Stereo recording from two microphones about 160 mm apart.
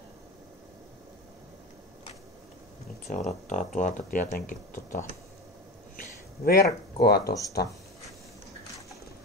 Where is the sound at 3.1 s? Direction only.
45° left (ahead or behind).